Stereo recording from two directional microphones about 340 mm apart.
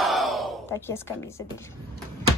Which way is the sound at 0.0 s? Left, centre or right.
Centre.